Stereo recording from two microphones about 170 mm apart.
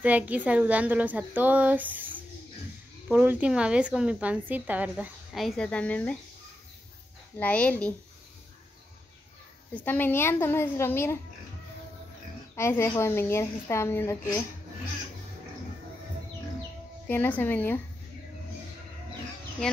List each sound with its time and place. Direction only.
0.0 s a woman's voice: 10° right (ahead or behind)
3.1 s a woman's voice: 10° right (ahead or behind); by 6.1 s 10° left (ahead or behind)
7.3 s a woman's voice: 10° left (ahead or behind)
9.8 s a woman's voice: 10° left (ahead or behind)
12.5 s a woman's voice: 15° left (ahead or behind)
17.1 s a woman's voice: 10° left (ahead or behind)